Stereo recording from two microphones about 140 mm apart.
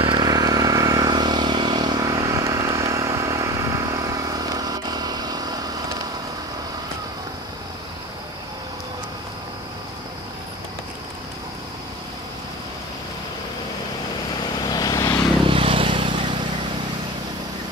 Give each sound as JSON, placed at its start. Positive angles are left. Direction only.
{"t": 0.0, "sound": "vehicle", "side_deg": -35}
{"t": 14.6, "sound": "vehicle", "side_deg": 30}
{"t": 15.4, "sound": "vehicle", "side_deg": -40}